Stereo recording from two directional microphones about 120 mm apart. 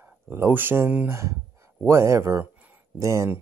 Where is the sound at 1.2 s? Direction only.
25° right (ahead or behind).